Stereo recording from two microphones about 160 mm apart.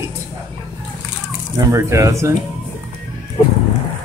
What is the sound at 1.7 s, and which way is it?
Speech, 20° right (ahead or behind).